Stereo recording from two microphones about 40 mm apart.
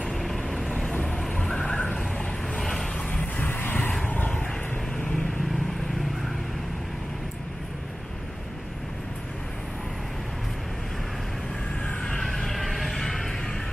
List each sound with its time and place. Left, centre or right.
0.1 s vehicle: centre
0.7 s vehicle: centre
1.3 s a sound: centre
2.6 s vehicle: centre
3.3 s vehicle: left
4.9 s vehicle: centre
12.2 s vehicle: centre